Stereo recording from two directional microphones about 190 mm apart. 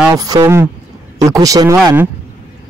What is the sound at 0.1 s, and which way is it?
Speech, 20° right (ahead or behind).